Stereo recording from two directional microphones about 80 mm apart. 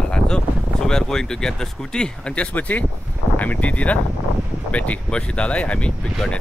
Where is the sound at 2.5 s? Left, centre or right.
Left.